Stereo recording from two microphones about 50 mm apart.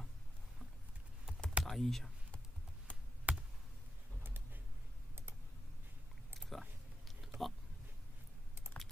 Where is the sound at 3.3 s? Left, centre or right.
Right.